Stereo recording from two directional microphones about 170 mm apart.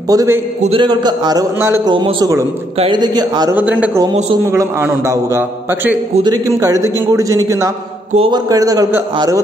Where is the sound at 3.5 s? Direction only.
10° right (ahead or behind).